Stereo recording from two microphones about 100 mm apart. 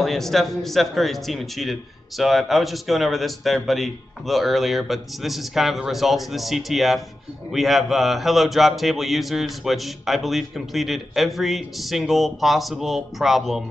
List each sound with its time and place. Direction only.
0.0 s a man's voice: centre (ahead or behind)